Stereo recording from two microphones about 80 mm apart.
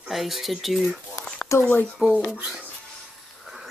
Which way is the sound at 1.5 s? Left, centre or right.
Left.